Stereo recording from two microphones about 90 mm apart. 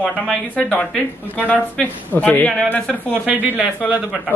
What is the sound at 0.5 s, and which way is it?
Speech, 10° left (ahead or behind).